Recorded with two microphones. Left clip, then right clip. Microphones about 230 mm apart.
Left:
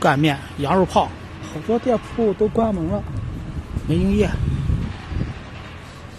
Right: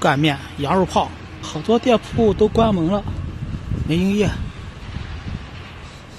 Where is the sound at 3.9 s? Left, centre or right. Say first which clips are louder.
Even; centre.